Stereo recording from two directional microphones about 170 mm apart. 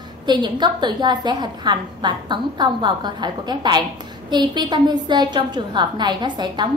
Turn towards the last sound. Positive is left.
turn(degrees=-25)  # may be behind; listen again after turning